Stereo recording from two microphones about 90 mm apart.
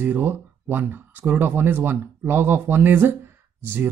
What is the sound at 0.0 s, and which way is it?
Speech, 20° right (ahead or behind).